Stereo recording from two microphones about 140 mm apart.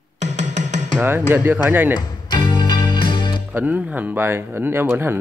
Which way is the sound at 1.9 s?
30° left (ahead or behind).